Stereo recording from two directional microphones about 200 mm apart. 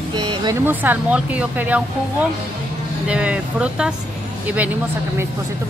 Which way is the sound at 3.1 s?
5° right (ahead or behind).